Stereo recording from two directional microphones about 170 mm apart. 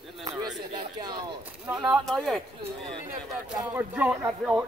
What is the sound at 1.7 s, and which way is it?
Speech, centre (ahead or behind).